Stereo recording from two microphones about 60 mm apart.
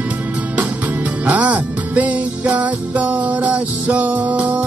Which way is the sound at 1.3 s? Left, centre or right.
Right.